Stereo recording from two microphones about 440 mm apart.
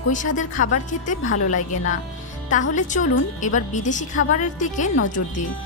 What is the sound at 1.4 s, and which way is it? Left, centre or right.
Speech, left.